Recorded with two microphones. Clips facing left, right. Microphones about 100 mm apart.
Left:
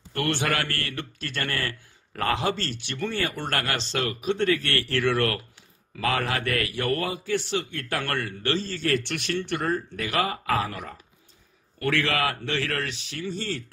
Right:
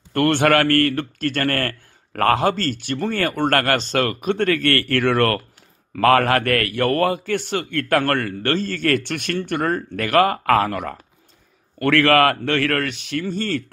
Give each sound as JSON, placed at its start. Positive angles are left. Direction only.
{"t": 0.1, "sound": "a man's voice", "side_deg": -55}